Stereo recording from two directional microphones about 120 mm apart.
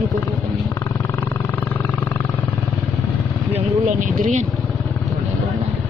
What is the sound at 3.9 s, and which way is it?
Speech, 90° right.